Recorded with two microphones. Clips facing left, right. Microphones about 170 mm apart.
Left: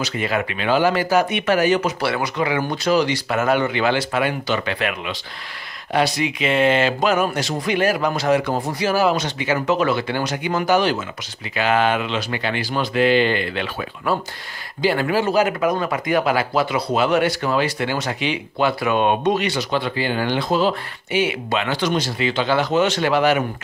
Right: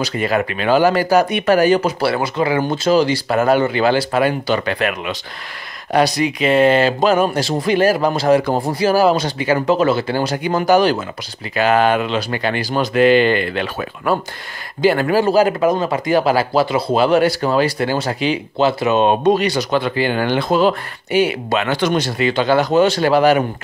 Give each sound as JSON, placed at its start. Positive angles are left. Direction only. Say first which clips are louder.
{"t": 0.0, "sound": "speech", "louder": "right 4 dB", "side_deg": -40}
{"t": 19.8, "sound": "speech", "louder": "right 4 dB", "side_deg": -55}